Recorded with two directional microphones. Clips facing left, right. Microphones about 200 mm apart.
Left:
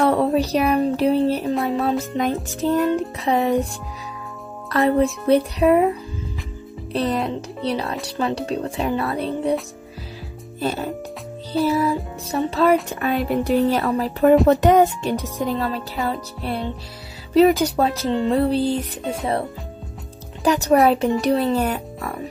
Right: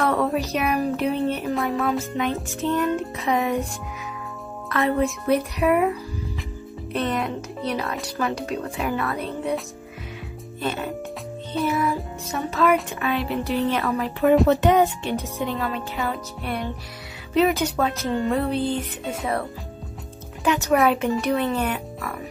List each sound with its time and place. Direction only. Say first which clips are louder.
0.0 s music: left 4 dB; 30° left (ahead or behind)
1.4 s music: left 3 dB; centre (ahead or behind)
1.7 s music: left 2 dB; 25° left (ahead or behind)
2.6 s speech: left 4 dB; 40° left (ahead or behind)
4.6 s speech: left 4 dB; 35° left (ahead or behind)
5.2 s a sound: left 4 dB; 30° left (ahead or behind)
6.9 s speech: left 3 dB; 35° left (ahead or behind)
10.6 s speech: left 3 dB; 40° left (ahead or behind)
11.5 s music: left 5 dB; centre (ahead or behind)
12.3 s speech: left 3 dB; 30° left (ahead or behind)
13.0 s speech: left 4 dB; 40° left (ahead or behind)
20.4 s speech: left 4 dB; 35° left (ahead or behind)